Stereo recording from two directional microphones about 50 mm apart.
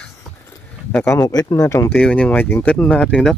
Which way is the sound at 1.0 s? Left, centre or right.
Left.